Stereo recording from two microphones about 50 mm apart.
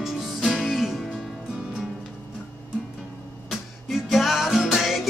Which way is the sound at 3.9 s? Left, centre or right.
Centre.